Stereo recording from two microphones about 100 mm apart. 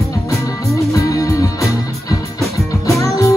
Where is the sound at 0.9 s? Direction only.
35° left (ahead or behind).